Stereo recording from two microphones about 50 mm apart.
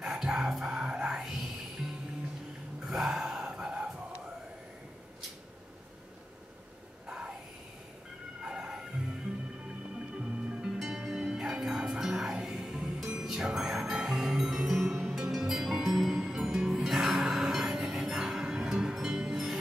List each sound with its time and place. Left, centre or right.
0.0 s music: centre
2.9 s gasp: centre
7.1 s vehicle: centre
8.4 s music: centre
10.1 s music: centre